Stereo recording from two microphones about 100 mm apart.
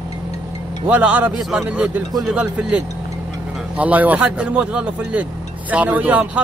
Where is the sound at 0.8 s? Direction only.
15° right (ahead or behind).